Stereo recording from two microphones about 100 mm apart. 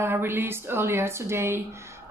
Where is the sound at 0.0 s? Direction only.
20° right (ahead or behind).